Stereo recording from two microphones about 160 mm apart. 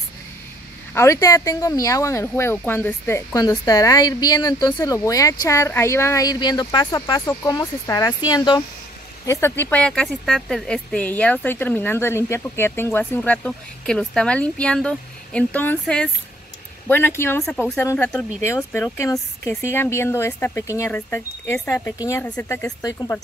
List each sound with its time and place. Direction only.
0.9 s speech: 20° left (ahead or behind)